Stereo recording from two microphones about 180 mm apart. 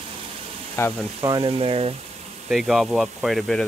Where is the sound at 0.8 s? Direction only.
15° left (ahead or behind).